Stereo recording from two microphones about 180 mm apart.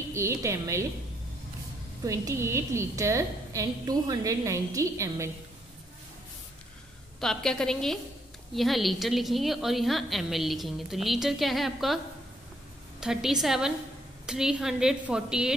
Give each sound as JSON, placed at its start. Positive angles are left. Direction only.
{"t": 0.1, "sound": "a woman's voice", "side_deg": -15}
{"t": 2.0, "sound": "a woman's voice", "side_deg": -15}
{"t": 7.2, "sound": "a woman's voice", "side_deg": 5}
{"t": 13.0, "sound": "a woman's voice", "side_deg": -5}